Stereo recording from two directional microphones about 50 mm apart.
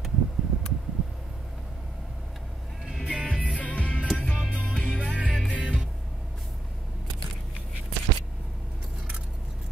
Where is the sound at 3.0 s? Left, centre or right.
Centre.